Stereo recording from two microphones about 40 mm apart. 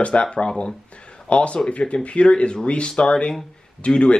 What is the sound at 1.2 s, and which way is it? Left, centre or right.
Speech, left.